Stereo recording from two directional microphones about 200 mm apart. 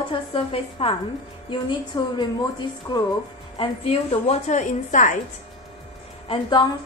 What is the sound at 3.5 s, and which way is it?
A woman's voice, 30° left (ahead or behind).